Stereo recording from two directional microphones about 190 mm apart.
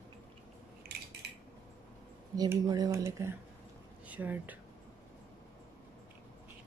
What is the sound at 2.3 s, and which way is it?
Speech, 20° right (ahead or behind).